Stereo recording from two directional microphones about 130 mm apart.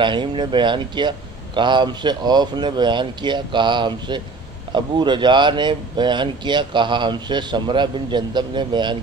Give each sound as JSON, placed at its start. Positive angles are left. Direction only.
{"t": 0.0, "sound": "speech", "side_deg": -35}